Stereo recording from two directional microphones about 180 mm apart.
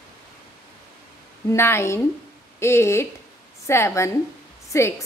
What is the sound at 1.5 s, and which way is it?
A woman's voice, 15° left (ahead or behind).